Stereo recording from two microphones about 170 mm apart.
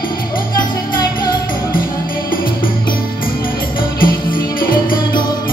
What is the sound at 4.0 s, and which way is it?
Music, 25° left (ahead or behind).